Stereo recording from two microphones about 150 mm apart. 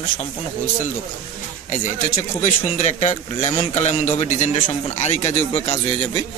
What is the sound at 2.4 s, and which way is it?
A man's voice, 50° left (ahead or behind).